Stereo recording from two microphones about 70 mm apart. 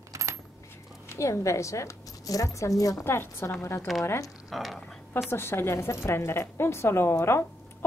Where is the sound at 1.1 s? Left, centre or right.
Left.